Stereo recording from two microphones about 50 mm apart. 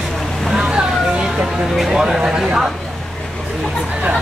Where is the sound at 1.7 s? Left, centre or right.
Centre.